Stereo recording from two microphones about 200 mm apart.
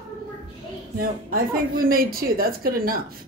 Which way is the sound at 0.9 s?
45° right (ahead or behind).